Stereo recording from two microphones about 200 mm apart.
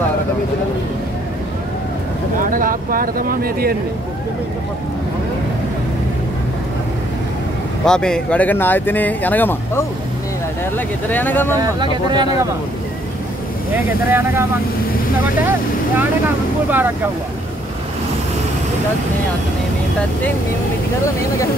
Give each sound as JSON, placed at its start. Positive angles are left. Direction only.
{"t": 2.4, "sound": "speech", "side_deg": -45}
{"t": 7.8, "sound": "speech", "side_deg": 5}
{"t": 11.1, "sound": "speech", "side_deg": 10}
{"t": 11.6, "sound": "speech", "side_deg": -20}
{"t": 14.1, "sound": "speech", "side_deg": -15}